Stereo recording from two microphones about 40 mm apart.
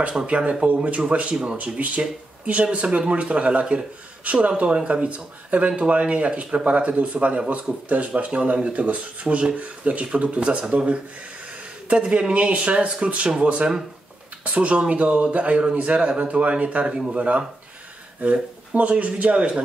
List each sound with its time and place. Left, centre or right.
0.3 s speech: right
1.3 s speech: centre
1.6 s speech: right
16.9 s speech: right
18.2 s speech: right